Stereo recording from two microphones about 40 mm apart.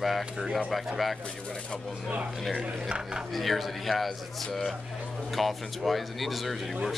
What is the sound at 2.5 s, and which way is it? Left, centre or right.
Speech, right.